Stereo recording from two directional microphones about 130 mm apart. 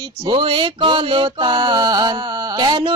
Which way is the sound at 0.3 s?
40° right (ahead or behind).